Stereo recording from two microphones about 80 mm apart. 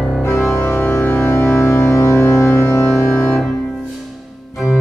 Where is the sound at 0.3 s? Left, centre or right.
Left.